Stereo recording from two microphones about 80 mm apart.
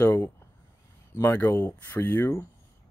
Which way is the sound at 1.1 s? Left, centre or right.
Left.